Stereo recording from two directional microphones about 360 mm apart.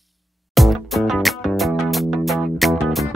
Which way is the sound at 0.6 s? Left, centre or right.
Centre.